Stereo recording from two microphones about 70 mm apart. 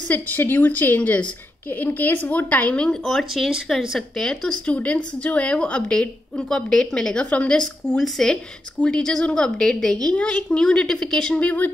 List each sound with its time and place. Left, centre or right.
0.1 s speech: left; by 4.0 s centre
4.2 s a woman's voice: centre
11.3 s speech: left